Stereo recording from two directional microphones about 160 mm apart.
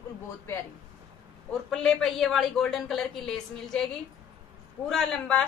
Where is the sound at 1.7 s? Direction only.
5° left (ahead or behind).